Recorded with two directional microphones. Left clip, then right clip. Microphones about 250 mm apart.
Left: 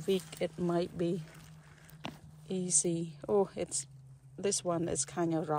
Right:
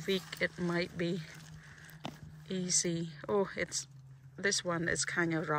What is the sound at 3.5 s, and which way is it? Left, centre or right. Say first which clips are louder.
Speech: right 1 dB; centre.